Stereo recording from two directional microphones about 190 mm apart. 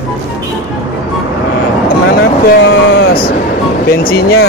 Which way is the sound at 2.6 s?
65° left (ahead or behind).